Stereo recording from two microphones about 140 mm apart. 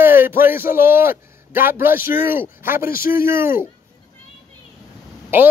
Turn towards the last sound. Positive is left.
turn(degrees=-15)  # may be behind; listen again after turning